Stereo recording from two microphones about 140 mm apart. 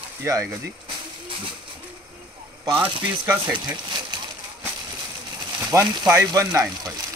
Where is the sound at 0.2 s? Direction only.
20° right (ahead or behind).